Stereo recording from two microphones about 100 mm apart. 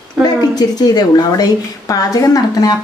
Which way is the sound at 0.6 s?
40° left (ahead or behind).